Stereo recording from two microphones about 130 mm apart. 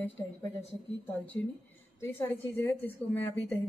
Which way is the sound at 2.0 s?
20° left (ahead or behind).